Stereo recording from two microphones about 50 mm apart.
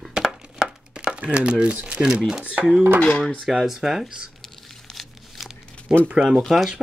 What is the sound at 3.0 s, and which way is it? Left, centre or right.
Speech, left.